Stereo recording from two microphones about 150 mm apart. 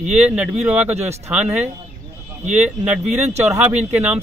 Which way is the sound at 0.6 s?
5° right (ahead or behind).